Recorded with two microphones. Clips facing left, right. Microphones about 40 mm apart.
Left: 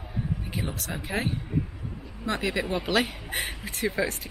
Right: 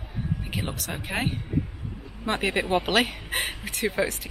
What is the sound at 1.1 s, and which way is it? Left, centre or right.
Speech, right.